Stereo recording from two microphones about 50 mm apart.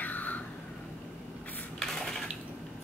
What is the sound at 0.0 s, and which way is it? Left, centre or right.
Vehicle, left.